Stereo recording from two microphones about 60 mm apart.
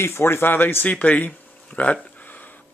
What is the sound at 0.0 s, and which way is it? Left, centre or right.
Speech, left.